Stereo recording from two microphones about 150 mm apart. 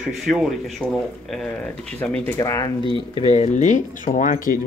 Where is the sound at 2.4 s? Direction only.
20° left (ahead or behind).